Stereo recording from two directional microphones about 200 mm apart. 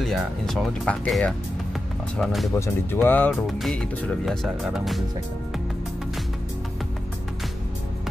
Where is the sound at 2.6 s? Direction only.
10° left (ahead or behind).